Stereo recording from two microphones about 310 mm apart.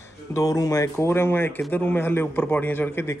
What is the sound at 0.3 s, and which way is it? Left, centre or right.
Speech, centre.